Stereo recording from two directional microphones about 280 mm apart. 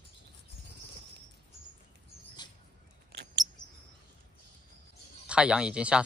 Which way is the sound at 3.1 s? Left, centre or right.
Right.